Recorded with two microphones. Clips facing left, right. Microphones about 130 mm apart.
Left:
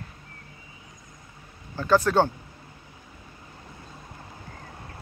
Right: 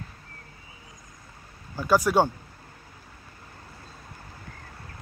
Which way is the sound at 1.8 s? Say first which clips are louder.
Left 1 dB; 10° right (ahead or behind).